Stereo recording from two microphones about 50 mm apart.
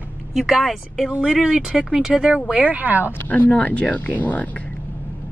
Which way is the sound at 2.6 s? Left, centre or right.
Right.